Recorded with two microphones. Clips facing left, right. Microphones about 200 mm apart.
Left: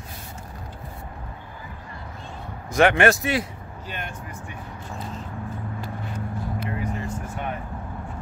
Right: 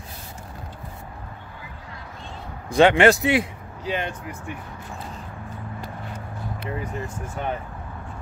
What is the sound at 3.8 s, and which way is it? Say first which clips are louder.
Speech: right 9 dB; 70° right (ahead or behind).